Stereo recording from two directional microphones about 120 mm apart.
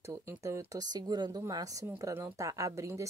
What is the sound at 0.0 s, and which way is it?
Speech, 25° right (ahead or behind).